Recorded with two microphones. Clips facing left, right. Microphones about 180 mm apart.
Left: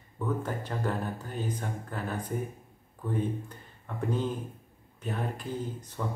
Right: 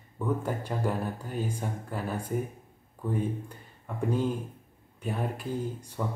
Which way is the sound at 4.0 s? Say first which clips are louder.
Right 2 dB; 10° right (ahead or behind).